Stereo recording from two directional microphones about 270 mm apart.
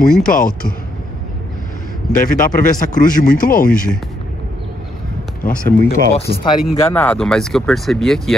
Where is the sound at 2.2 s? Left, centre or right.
Left.